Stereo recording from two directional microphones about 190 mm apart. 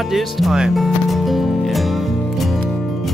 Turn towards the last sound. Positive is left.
turn(degrees=0)  # may be behind; listen again after turning